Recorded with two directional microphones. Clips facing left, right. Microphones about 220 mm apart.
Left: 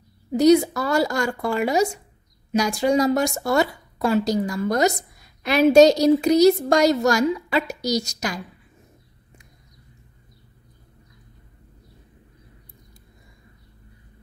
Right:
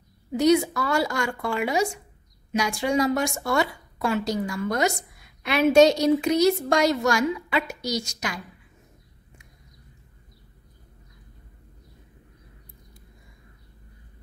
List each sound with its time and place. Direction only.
0.3 s a woman's voice: 40° left (ahead or behind)